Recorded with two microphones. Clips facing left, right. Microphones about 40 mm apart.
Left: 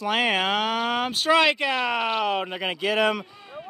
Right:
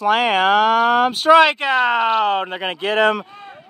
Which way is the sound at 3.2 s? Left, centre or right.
Right.